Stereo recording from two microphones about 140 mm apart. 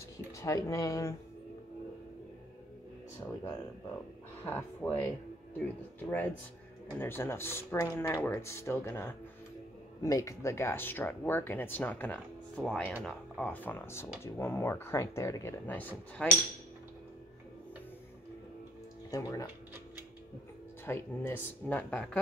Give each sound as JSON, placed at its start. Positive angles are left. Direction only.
{"t": 0.4, "sound": "speech", "side_deg": 25}
{"t": 3.2, "sound": "speech", "side_deg": 30}
{"t": 4.5, "sound": "speech", "side_deg": 10}
{"t": 19.0, "sound": "speech", "side_deg": 25}
{"t": 20.8, "sound": "speech", "side_deg": 15}